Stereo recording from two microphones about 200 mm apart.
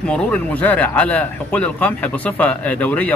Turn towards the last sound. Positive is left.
turn(degrees=10)  # may be behind; listen again after turning